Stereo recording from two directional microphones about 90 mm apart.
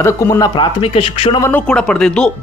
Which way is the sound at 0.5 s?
75° left (ahead or behind).